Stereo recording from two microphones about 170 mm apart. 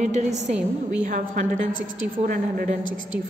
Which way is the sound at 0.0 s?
45° right (ahead or behind).